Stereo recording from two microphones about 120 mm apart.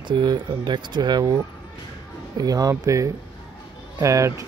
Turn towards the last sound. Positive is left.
turn(degrees=-25)  # may be behind; listen again after turning